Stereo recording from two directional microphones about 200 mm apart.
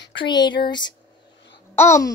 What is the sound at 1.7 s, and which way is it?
Speech, 15° left (ahead or behind).